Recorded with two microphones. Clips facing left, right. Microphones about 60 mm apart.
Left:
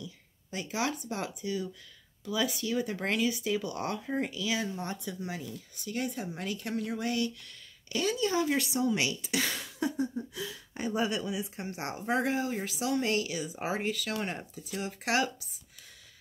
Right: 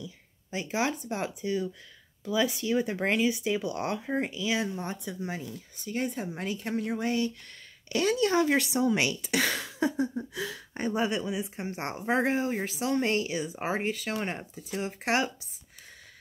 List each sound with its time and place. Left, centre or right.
0.0 s speech: right
7.9 s speech: right
10.7 s speech: right
11.1 s speech: right